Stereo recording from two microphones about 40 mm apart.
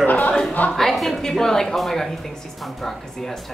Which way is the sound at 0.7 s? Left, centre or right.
Centre.